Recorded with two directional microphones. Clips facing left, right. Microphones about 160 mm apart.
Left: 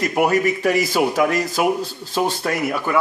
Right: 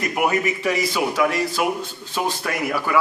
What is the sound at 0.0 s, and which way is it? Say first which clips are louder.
A man's voice: left 4 dB; 35° left (ahead or behind).